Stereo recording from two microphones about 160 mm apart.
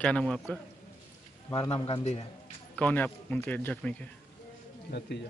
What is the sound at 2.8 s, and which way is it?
Speech, 10° left (ahead or behind).